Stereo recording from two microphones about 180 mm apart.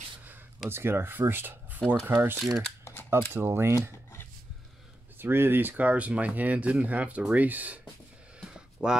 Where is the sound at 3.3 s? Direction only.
15° right (ahead or behind).